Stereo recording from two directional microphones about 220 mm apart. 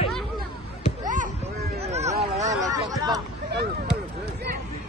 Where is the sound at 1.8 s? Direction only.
30° right (ahead or behind).